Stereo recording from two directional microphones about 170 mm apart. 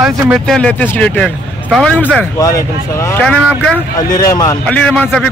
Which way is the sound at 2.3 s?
20° left (ahead or behind).